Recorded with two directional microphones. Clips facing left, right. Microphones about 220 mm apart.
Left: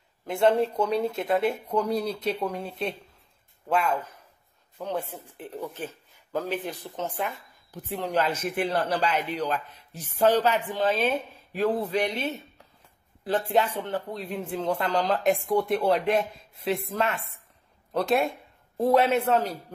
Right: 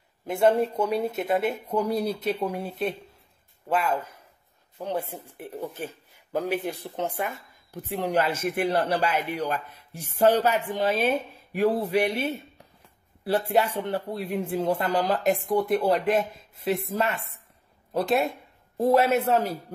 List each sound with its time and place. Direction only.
0.3 s speech: 5° right (ahead or behind)
8.3 s a man's voice: 50° right (ahead or behind)
8.6 s speech: 10° right (ahead or behind)